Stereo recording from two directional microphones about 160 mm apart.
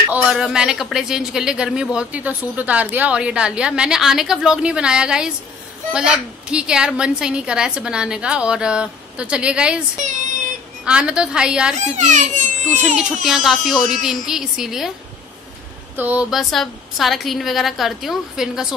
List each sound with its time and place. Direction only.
0.1 s speech: 5° right (ahead or behind)
10.9 s speech: 5° right (ahead or behind)
11.9 s a child's voice: 50° right (ahead or behind)
12.8 s speech: centre (ahead or behind)
16.0 s speech: 10° right (ahead or behind)